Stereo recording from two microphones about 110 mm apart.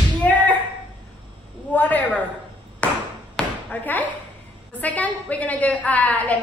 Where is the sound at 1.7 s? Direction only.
15° left (ahead or behind).